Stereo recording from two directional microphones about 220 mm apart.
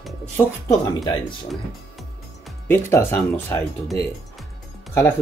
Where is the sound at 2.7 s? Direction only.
10° left (ahead or behind).